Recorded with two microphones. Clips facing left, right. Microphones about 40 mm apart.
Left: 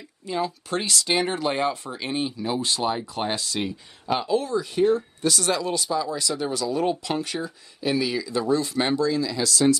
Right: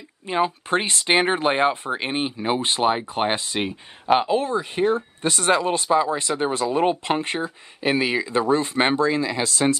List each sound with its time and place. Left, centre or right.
0.3 s speech: right